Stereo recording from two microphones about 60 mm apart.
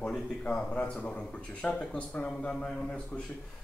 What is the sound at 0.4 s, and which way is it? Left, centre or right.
Speech, centre.